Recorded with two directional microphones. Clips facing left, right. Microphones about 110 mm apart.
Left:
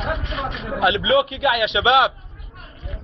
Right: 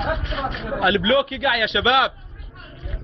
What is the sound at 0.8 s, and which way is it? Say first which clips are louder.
Speech: left 1 dB; 15° left (ahead or behind).